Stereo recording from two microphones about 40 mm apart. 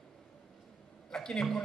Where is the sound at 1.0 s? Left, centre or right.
Centre.